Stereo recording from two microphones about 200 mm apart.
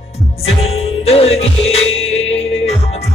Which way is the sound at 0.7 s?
30° left (ahead or behind).